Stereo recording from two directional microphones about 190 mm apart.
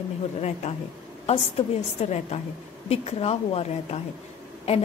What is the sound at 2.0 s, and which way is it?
A woman's voice, 35° left (ahead or behind).